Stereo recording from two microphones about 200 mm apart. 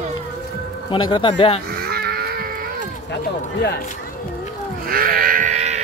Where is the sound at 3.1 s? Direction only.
55° left (ahead or behind).